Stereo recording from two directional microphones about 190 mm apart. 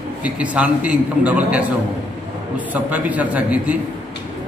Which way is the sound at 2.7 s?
10° right (ahead or behind).